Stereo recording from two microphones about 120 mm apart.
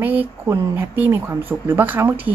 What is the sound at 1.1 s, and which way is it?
Speech, 15° right (ahead or behind).